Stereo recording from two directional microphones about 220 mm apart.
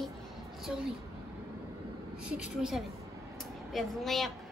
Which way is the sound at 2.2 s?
5° right (ahead or behind).